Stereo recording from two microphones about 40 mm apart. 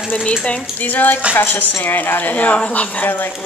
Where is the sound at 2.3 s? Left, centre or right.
Left.